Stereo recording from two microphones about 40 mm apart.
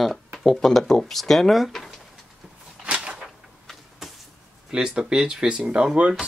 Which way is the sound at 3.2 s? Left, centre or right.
Centre.